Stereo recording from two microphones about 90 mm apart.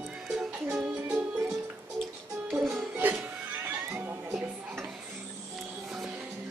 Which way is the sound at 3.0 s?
25° right (ahead or behind).